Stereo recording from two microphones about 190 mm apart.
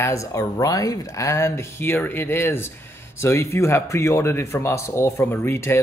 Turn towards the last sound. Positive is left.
turn(degrees=10)  # may be behind; listen again after turning